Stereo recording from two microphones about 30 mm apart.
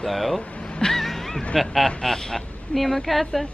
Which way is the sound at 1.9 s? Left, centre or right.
Left.